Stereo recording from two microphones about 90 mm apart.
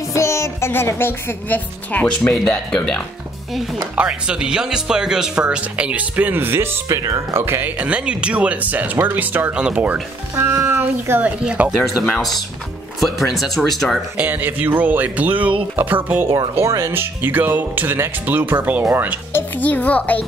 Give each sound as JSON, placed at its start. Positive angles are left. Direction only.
{"t": 0.1, "sound": "speech", "side_deg": 35}
{"t": 2.3, "sound": "a child's voice", "side_deg": 5}
{"t": 3.7, "sound": "speech", "side_deg": -15}
{"t": 7.0, "sound": "speech", "side_deg": -35}
{"t": 10.3, "sound": "speech", "side_deg": -25}
{"t": 11.1, "sound": "speech", "side_deg": -15}
{"t": 11.9, "sound": "speech", "side_deg": 0}
{"t": 14.1, "sound": "speech", "side_deg": -20}
{"t": 16.5, "sound": "speech", "side_deg": -30}
{"t": 16.9, "sound": "speech", "side_deg": -20}
{"t": 19.3, "sound": "a child's voice", "side_deg": 20}